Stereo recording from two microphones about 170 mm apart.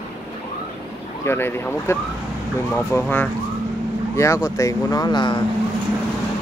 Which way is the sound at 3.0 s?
5° left (ahead or behind).